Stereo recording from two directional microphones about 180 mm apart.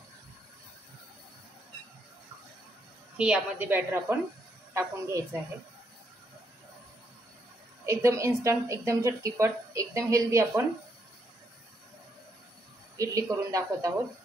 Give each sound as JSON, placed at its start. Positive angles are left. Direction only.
{"t": 3.2, "sound": "a woman's voice", "side_deg": -10}
{"t": 7.8, "sound": "a woman's voice", "side_deg": -15}
{"t": 12.9, "sound": "speech", "side_deg": -20}